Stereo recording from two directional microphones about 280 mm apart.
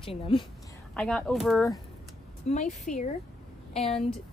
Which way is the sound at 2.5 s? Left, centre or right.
Left.